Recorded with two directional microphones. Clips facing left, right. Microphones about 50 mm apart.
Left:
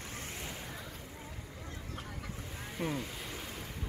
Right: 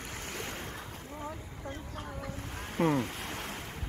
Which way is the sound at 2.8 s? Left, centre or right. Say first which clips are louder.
Right 9 dB; right.